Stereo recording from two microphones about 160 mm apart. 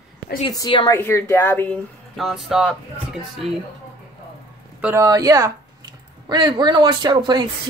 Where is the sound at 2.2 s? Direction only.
Centre (ahead or behind).